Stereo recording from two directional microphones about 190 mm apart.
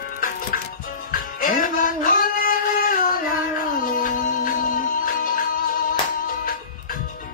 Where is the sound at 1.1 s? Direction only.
45° left (ahead or behind).